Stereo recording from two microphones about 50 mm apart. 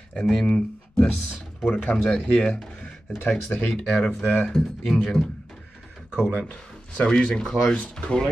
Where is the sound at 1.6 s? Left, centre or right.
Left.